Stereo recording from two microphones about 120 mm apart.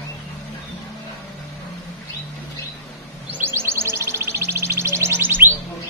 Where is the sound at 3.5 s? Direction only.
20° right (ahead or behind).